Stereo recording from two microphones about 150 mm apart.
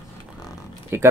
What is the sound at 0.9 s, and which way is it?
Speech, 15° right (ahead or behind).